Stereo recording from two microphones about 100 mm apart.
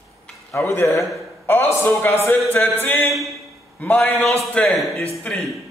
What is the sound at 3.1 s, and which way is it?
Speech, centre (ahead or behind).